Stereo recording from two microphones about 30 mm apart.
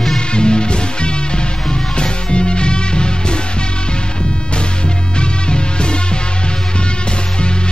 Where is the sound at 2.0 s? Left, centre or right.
Left.